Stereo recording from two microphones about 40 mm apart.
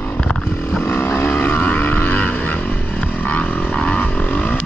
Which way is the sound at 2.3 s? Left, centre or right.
Left.